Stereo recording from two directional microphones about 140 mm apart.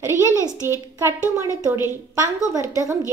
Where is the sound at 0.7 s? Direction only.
20° right (ahead or behind).